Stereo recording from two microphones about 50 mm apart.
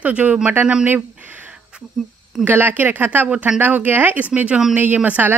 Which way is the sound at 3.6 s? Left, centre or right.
Right.